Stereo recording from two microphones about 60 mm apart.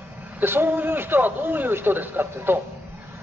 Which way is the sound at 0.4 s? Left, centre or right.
Right.